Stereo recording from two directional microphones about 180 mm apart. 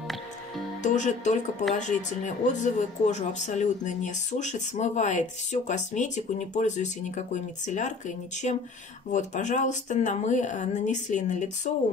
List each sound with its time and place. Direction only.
0.8 s speech: 40° left (ahead or behind)